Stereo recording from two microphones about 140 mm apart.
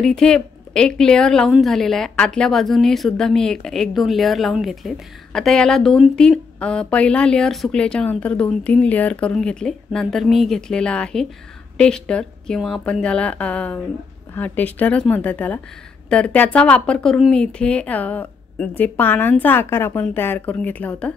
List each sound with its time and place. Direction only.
0.0 s speech: 5° left (ahead or behind)